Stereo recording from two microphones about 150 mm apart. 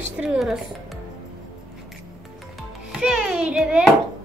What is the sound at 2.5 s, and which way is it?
A child's voice, centre (ahead or behind).